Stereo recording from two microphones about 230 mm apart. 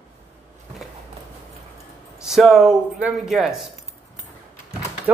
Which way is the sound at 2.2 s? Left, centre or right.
Centre.